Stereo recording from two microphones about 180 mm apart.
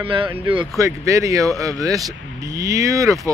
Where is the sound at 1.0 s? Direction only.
15° right (ahead or behind).